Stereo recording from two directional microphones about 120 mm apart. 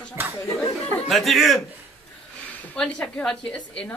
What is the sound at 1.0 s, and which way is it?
Speech, centre (ahead or behind).